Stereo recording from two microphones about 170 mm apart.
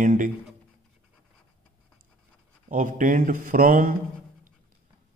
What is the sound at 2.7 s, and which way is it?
A man's voice, 50° right (ahead or behind).